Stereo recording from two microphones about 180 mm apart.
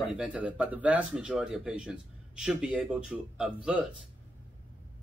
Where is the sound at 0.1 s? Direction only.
5° right (ahead or behind).